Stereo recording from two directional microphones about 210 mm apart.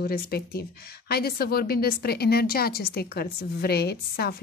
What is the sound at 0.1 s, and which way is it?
A woman's voice, 50° left (ahead or behind).